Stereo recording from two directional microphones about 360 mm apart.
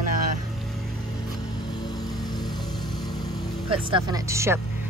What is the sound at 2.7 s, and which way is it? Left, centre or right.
Vehicle, centre.